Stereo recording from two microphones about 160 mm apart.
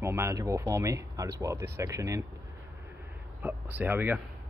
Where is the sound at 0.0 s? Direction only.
15° right (ahead or behind).